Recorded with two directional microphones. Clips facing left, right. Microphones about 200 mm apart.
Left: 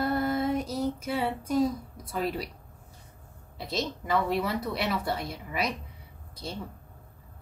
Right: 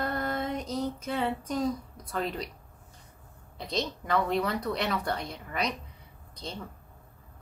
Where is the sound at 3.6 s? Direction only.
5° left (ahead or behind).